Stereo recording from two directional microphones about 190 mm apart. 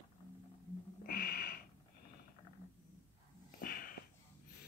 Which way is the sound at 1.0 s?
50° left (ahead or behind).